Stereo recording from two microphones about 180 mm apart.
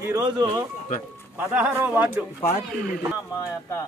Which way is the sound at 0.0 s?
20° right (ahead or behind).